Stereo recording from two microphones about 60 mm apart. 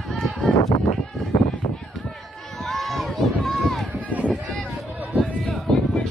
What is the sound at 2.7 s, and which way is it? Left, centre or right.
Run, centre.